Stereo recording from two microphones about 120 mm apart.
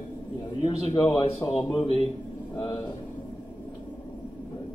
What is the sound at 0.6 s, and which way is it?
A man's voice, 40° left (ahead or behind).